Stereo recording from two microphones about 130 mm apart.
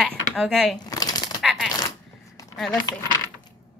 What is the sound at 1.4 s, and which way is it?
Coin, 5° right (ahead or behind).